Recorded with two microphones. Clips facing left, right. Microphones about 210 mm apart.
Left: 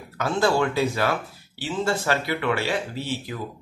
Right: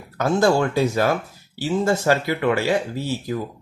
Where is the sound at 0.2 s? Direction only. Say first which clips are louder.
Right 4 dB; 45° right (ahead or behind).